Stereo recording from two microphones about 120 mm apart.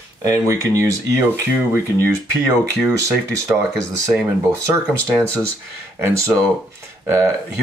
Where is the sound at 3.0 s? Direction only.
25° right (ahead or behind).